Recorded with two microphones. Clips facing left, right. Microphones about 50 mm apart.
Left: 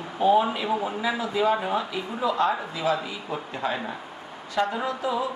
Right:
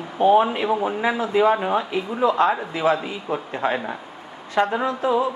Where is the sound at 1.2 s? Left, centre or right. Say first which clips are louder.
Right 6 dB; right.